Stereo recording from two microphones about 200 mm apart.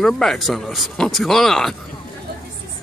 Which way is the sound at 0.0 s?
Centre (ahead or behind).